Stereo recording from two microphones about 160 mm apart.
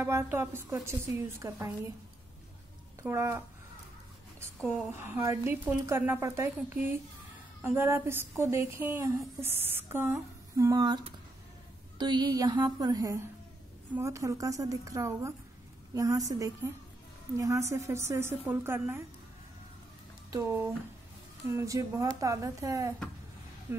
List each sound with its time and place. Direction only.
0.0 s a woman's voice: 15° right (ahead or behind)
3.0 s a woman's voice: 15° right (ahead or behind)
4.7 s a woman's voice: 15° right (ahead or behind)
20.2 s a woman's voice: 20° right (ahead or behind)